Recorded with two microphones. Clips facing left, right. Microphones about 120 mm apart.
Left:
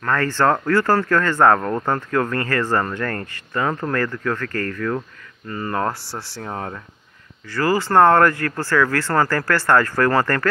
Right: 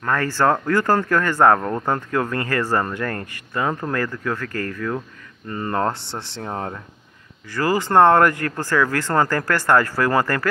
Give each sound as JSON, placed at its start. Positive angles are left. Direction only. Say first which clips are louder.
{"t": 0.0, "sound": "speech", "louder": "left 1 dB", "side_deg": -15}
{"t": 5.5, "sound": "speech", "louder": "right 1 dB", "side_deg": -25}